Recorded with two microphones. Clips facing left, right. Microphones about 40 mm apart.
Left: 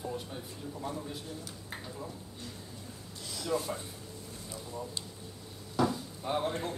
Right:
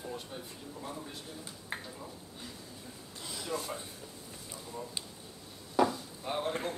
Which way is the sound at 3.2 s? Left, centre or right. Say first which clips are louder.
Left 2 dB; right.